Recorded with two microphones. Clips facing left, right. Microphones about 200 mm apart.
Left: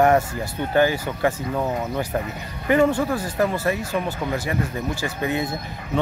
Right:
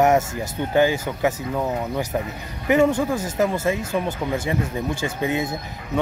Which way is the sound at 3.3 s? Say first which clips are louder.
Right 1 dB; 20° right (ahead or behind).